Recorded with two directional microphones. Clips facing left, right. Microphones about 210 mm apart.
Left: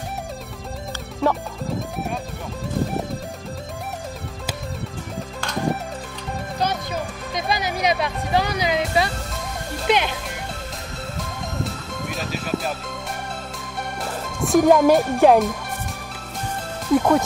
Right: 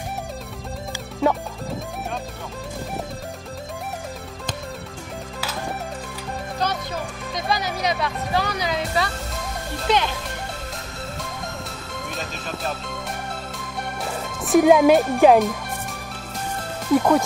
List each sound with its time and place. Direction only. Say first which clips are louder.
1.2 s speech: right 1 dB; centre (ahead or behind)
6.6 s music: left 2 dB; 15° left (ahead or behind)
9.8 s speech: left 1 dB; 15° left (ahead or behind)
11.1 s music: left 3 dB; centre (ahead or behind)
14.0 s music: left 5 dB; centre (ahead or behind)
15.0 s speech: even; centre (ahead or behind)
16.9 s speech: even; centre (ahead or behind)